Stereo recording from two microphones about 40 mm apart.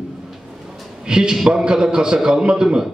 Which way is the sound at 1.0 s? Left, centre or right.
Right.